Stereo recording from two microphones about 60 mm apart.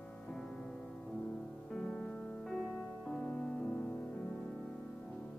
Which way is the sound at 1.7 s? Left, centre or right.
Centre.